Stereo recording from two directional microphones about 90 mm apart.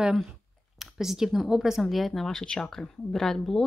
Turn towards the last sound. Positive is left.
turn(degrees=5)  # may be behind; listen again after turning